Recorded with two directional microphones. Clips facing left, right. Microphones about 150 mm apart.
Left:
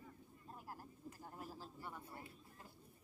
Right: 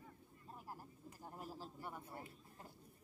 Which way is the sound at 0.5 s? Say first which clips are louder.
Even; 5° right (ahead or behind).